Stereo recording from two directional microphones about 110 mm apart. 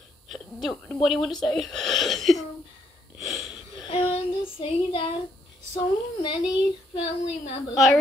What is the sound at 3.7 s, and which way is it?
Speech, 50° left (ahead or behind).